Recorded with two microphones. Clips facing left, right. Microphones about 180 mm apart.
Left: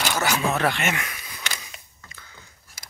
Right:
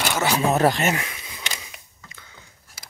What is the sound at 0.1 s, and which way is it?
Speech, 25° right (ahead or behind).